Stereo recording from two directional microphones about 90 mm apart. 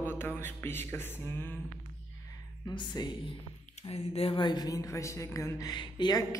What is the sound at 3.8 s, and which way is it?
A woman's voice, 85° left.